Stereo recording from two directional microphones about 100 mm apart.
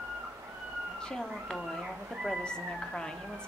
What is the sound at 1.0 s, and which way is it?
Speech, 5° left (ahead or behind).